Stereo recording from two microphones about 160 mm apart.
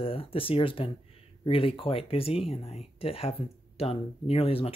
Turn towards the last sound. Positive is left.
turn(degrees=35)  # may be behind; listen again after turning